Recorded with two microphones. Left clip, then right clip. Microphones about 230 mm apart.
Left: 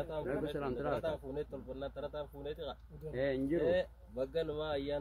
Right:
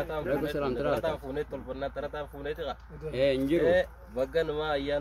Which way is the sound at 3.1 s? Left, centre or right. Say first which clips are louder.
Right 9 dB; centre.